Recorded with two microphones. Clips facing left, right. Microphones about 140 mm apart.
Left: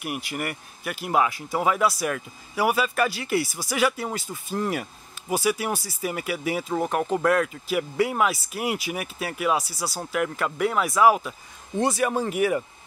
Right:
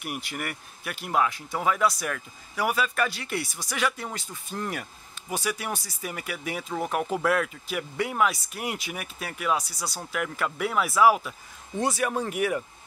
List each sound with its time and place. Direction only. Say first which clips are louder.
0.0 s speech: left 4 dB; 5° left (ahead or behind)